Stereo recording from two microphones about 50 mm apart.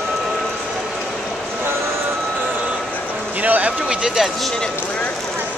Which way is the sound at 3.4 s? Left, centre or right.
Right.